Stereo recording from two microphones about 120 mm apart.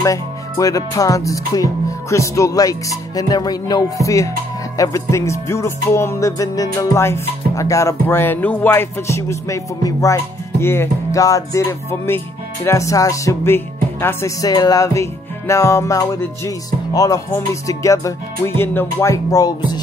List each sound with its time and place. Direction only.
0.0 s music: 30° left (ahead or behind)